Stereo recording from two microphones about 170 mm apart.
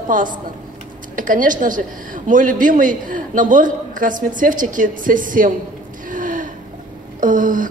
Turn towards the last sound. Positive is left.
turn(degrees=-50)  # may be behind; listen again after turning